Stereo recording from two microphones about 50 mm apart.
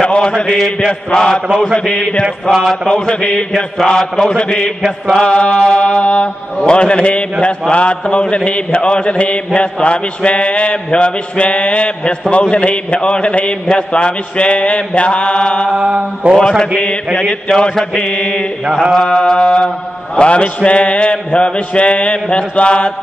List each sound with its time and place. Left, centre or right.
0.0 s mantra: centre
1.5 s mantra: centre
1.9 s mantra: left
2.4 s speech: centre
2.9 s mantra: left
4.0 s speech: centre
4.4 s mantra: left
15.7 s mantra: centre
17.3 s mantra: centre
18.7 s mantra: centre
18.9 s mantra: centre